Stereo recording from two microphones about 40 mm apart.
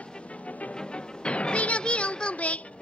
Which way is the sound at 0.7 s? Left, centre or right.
Left.